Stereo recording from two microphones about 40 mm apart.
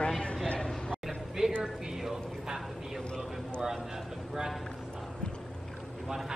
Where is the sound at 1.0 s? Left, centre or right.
Centre.